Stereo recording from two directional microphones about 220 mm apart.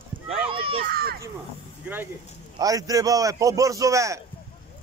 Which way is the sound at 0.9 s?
45° right (ahead or behind).